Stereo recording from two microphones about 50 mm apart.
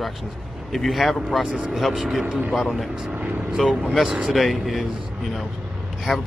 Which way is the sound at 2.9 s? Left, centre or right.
Right.